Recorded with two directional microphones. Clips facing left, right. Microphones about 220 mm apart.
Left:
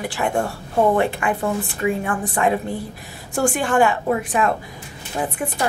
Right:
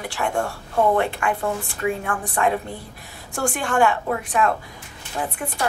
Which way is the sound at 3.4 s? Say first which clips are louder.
Left 3 dB; 5° left (ahead or behind).